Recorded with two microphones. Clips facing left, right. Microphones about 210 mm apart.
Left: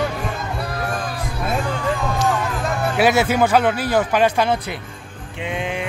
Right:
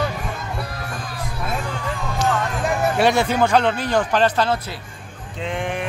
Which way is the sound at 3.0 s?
5° left (ahead or behind).